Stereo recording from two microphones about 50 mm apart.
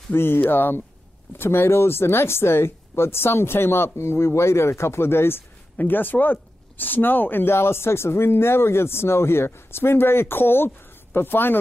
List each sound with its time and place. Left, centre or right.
0.1 s speech: left
7.5 s speech: left